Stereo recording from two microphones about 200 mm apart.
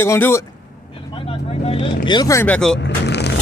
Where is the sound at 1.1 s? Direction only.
25° left (ahead or behind); by 2.8 s 5° left (ahead or behind).